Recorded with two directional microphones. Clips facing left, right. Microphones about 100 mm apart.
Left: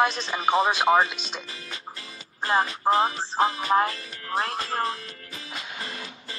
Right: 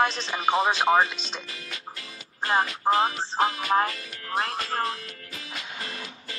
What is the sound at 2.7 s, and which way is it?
Speech, 30° left (ahead or behind).